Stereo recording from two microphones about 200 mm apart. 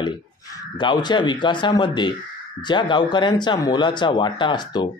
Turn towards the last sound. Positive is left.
turn(degrees=20)  # may be behind; listen again after turning